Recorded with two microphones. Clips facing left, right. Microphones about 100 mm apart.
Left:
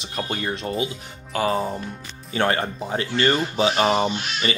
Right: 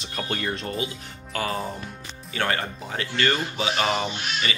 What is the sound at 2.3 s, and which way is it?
Speech, 30° left (ahead or behind).